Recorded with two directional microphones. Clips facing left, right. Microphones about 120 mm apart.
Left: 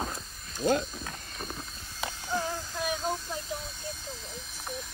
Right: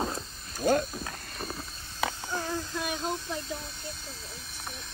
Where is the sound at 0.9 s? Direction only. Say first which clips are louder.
Right 2 dB; 5° right (ahead or behind).